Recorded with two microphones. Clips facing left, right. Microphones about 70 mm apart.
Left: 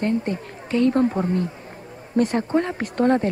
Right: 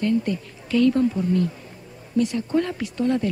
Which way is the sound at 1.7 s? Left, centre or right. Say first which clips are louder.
Left 4 dB; left.